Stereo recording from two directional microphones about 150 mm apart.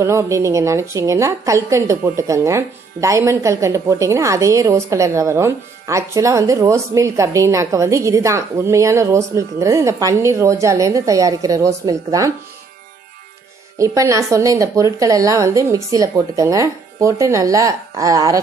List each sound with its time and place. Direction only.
0.0 s a woman's voice: 20° right (ahead or behind)
13.7 s a woman's voice: 20° right (ahead or behind)